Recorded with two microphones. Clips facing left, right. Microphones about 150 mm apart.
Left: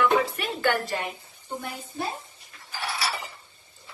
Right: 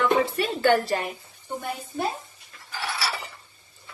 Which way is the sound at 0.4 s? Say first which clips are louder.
Right 5 dB; 35° right (ahead or behind).